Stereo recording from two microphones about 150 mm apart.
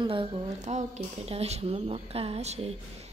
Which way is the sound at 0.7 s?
45° right (ahead or behind).